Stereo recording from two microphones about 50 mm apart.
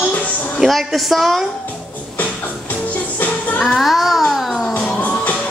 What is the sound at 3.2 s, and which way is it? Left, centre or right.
Music, left.